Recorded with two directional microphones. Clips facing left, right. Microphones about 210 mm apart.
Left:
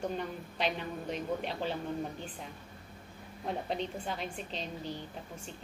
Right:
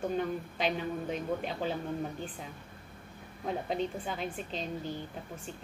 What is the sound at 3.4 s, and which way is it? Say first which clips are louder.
A woman's voice: right 2 dB; centre (ahead or behind).